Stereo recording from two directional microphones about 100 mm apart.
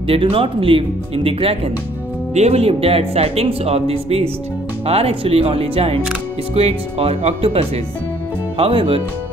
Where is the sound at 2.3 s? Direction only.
90° right.